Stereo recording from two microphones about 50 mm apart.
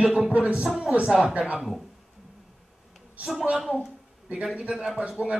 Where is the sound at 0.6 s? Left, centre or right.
Centre.